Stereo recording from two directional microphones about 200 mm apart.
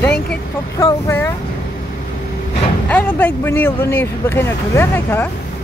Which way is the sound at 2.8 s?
10° left (ahead or behind).